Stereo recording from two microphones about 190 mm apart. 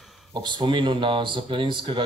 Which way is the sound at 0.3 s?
25° right (ahead or behind).